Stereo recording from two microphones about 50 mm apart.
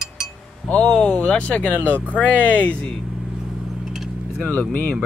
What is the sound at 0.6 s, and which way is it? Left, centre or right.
Speech, left.